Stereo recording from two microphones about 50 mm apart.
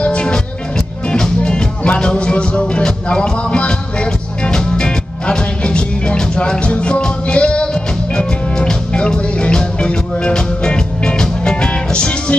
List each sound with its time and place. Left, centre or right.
0.0 s music: left